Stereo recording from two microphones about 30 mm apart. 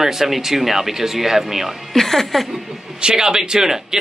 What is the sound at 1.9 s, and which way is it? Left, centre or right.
Speech, centre.